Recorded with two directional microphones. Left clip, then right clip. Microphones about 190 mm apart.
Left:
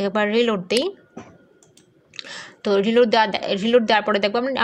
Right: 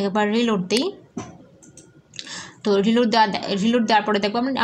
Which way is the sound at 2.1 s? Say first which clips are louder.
Even; 40° left (ahead or behind).